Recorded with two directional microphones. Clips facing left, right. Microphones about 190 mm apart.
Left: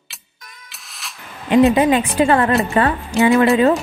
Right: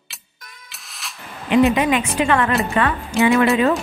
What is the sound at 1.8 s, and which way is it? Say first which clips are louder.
Speech: left 4 dB; 30° left (ahead or behind).